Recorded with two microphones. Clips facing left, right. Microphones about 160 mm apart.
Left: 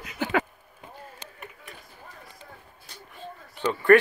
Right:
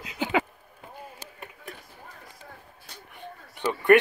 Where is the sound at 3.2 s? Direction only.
15° right (ahead or behind).